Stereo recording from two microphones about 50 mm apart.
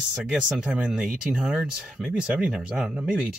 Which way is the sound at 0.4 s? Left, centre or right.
Right.